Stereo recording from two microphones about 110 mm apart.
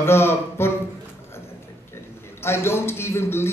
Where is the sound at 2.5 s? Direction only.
20° left (ahead or behind).